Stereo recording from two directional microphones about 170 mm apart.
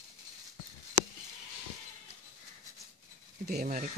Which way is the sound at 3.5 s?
60° right (ahead or behind).